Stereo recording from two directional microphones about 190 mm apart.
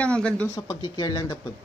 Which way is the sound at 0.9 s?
20° left (ahead or behind).